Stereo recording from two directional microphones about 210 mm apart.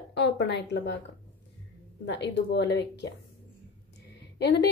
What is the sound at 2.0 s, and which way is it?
Speech, 55° left (ahead or behind).